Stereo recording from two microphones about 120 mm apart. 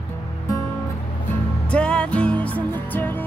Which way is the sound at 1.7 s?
10° left (ahead or behind).